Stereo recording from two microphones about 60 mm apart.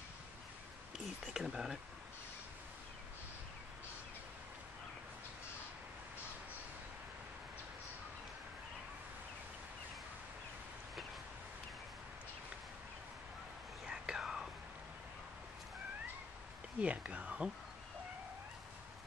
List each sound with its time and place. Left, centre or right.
0.9 s a sound: centre
1.4 s speech: centre
13.8 s whispering: centre
16.8 s speech: right